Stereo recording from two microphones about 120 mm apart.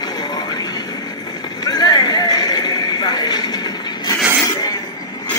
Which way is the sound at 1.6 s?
35° left (ahead or behind).